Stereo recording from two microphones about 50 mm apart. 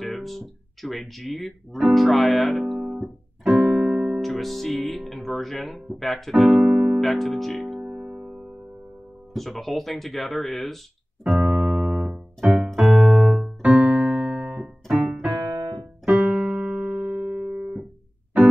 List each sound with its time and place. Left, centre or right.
0.0 s speech: centre
2.9 s music: centre
3.5 s music: centre
4.2 s speech: centre
7.0 s speech: centre
7.6 s music: centre
9.3 s speech: centre
11.2 s keyboard: centre
11.7 s music: centre
12.4 s keyboard: centre
13.7 s keyboard: right
14.6 s keyboard: centre